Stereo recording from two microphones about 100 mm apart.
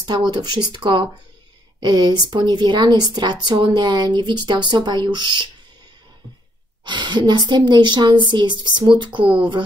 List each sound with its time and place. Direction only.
0.0 s speech: 45° right (ahead or behind)
6.8 s speech: 50° right (ahead or behind)